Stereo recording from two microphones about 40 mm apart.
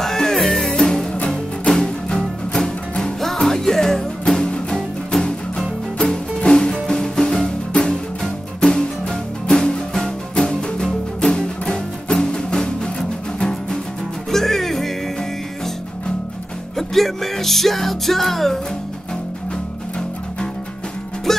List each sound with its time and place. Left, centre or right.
0.0 s music: centre
16.7 s music: centre
21.3 s music: centre